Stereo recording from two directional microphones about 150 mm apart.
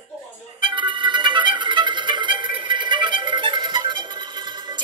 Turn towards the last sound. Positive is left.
turn(degrees=-30)  # may be behind; listen again after turning